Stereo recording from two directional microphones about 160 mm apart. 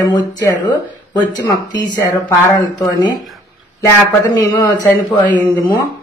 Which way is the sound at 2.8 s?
25° left (ahead or behind).